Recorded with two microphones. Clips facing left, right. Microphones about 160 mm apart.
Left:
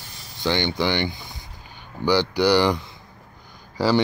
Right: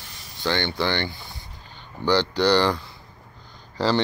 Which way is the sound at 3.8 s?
10° left (ahead or behind).